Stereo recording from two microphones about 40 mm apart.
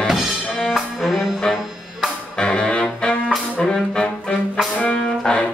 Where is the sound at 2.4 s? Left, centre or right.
Left.